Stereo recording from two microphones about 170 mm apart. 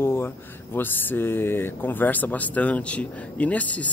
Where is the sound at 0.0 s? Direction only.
15° left (ahead or behind).